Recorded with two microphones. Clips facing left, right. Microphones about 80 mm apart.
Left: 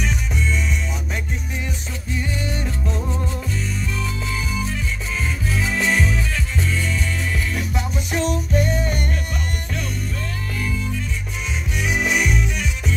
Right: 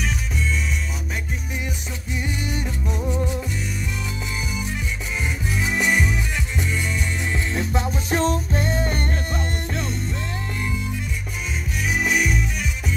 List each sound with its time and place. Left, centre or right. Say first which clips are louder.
2.4 s music: left 1 dB; centre
5.5 s music: even; centre; by 9.0 s right
11.9 s music: left 1 dB; centre